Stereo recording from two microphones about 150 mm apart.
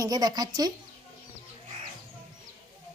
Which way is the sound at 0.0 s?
25° right (ahead or behind).